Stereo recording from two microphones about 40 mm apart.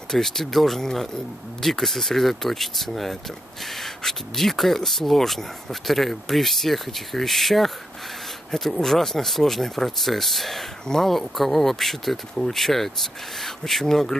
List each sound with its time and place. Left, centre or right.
0.1 s speech: centre